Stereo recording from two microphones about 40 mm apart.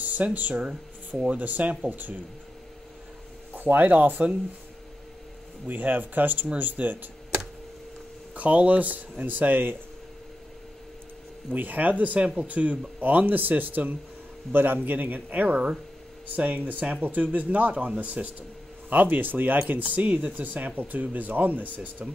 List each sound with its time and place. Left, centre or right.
0.0 s speech: right
0.6 s speech: right
1.3 s speech: right
3.5 s speech: right
5.7 s speech: right
8.4 s speech: right
11.5 s speech: right